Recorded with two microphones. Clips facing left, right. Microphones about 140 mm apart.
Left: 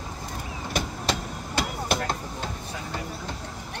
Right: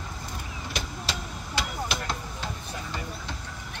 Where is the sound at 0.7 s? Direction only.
55° left (ahead or behind).